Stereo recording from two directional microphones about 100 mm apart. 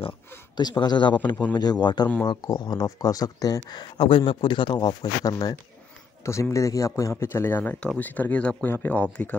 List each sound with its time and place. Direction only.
0.6 s speech: 45° left (ahead or behind)
4.0 s speech: 60° left (ahead or behind); by 9.4 s 15° left (ahead or behind)